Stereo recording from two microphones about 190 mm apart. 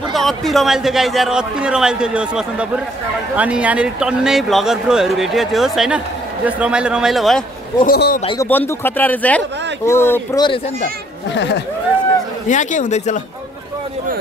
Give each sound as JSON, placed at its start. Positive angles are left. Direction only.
{"t": 0.1, "sound": "speech", "side_deg": 0}
{"t": 7.8, "sound": "a man's voice", "side_deg": 50}
{"t": 8.4, "sound": "speech", "side_deg": 10}
{"t": 12.4, "sound": "speech", "side_deg": 40}